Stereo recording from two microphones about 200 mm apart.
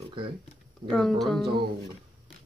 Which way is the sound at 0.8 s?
5° left (ahead or behind).